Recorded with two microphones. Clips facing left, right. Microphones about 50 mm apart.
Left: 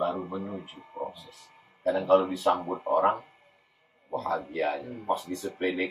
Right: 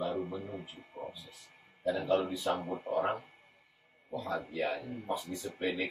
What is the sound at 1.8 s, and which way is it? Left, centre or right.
Speech, left.